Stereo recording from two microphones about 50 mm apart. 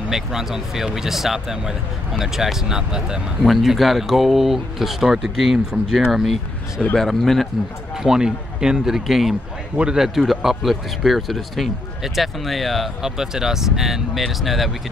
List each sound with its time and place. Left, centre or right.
0.1 s speech: centre
3.4 s speech: centre
7.0 s speech: centre
8.0 s speech: centre
13.0 s speech: centre